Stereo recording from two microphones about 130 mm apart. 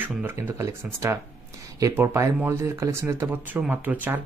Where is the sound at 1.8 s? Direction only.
25° right (ahead or behind).